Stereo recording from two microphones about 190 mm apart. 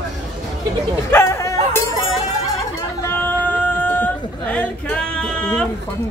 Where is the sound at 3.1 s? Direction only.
10° left (ahead or behind).